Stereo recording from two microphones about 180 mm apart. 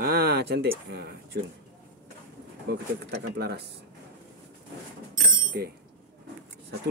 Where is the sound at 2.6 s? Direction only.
65° right (ahead or behind).